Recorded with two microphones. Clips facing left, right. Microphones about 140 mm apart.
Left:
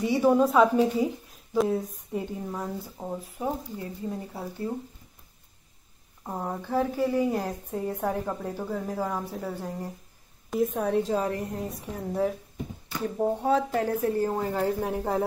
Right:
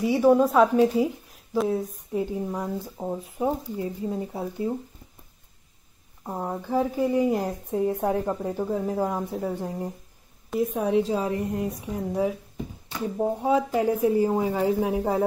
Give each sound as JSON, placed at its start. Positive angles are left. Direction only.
{"t": 0.0, "sound": "a woman's voice", "side_deg": -5}
{"t": 3.3, "sound": "speech", "side_deg": -20}
{"t": 6.2, "sound": "speech", "side_deg": -5}